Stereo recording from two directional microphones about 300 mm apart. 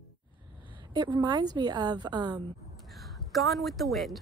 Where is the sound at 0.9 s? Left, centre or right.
Centre.